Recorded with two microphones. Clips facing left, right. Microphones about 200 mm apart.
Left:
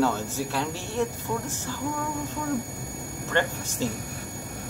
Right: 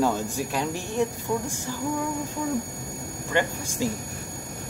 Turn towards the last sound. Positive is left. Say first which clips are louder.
# right 1 dB
turn(degrees=-10)  # may be behind; listen again after turning